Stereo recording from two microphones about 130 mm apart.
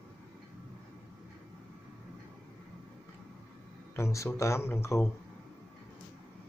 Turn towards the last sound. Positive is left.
turn(degrees=20)  # may be behind; listen again after turning